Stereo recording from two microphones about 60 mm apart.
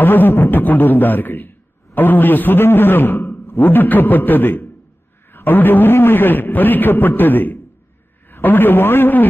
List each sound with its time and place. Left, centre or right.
0.0 s a man's voice: left